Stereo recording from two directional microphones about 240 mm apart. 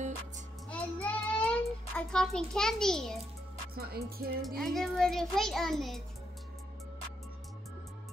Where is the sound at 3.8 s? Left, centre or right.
Right.